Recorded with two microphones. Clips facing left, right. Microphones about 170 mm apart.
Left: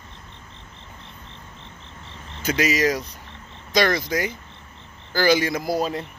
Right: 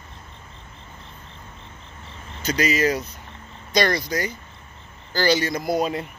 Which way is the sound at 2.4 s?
5° left (ahead or behind).